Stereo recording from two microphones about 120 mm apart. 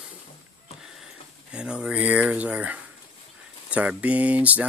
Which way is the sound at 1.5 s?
10° right (ahead or behind).